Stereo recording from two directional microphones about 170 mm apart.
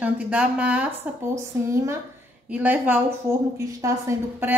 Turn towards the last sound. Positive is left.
turn(degrees=-15)  # may be behind; listen again after turning